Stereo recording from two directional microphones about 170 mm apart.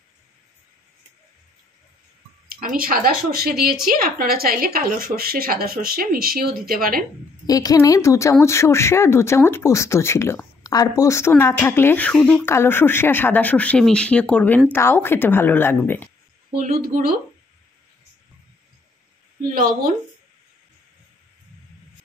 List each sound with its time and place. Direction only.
2.4 s a woman's voice: 55° right (ahead or behind)
7.4 s a woman's voice: 20° left (ahead or behind)
16.6 s a woman's voice: 60° right (ahead or behind)